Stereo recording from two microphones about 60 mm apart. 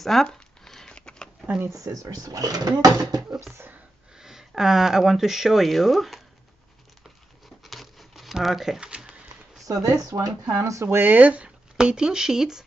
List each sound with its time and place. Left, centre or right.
0.0 s a sound: centre
1.8 s speech: right
4.2 s speech: centre
7.6 s crumpling: centre
9.7 s speech: right
10.9 s speech: right
11.1 s speech: right
11.4 s speech: centre